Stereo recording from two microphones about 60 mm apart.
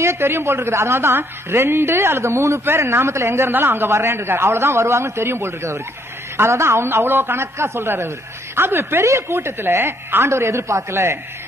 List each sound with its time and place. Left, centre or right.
0.0 s a man's voice: right